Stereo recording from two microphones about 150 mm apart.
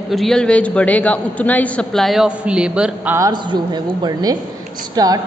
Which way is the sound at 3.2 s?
30° right (ahead or behind).